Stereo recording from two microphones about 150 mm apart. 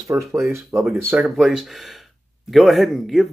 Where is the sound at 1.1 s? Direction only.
Centre (ahead or behind).